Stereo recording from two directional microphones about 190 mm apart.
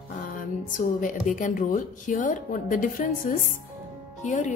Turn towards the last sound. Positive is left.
turn(degrees=40)  # may be behind; listen again after turning